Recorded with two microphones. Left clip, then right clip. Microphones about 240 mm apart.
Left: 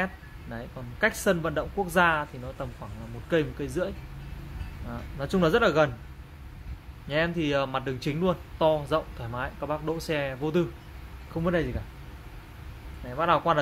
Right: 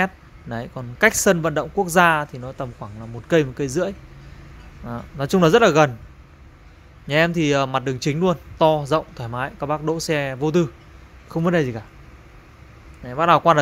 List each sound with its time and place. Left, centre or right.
0.0 s speech: right
7.1 s speech: right
13.1 s speech: right